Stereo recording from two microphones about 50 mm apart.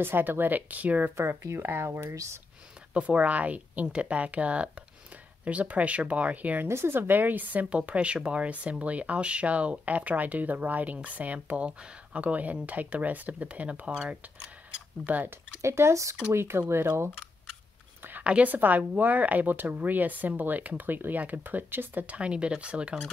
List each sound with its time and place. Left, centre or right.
0.0 s a woman's voice: right
1.4 s speech: right
2.9 s speech: right
6.7 s a woman's voice: right
7.7 s speech: right
15.0 s a woman's voice: right
15.6 s speech: right
16.3 s speech: right
18.2 s a woman's voice: right
22.0 s speech: right